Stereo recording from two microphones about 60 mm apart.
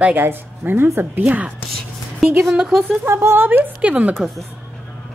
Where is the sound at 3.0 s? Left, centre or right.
Right.